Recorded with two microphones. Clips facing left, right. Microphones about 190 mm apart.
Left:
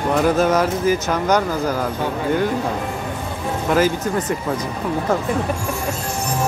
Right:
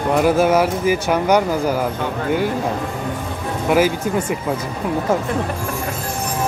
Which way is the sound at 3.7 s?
10° right (ahead or behind).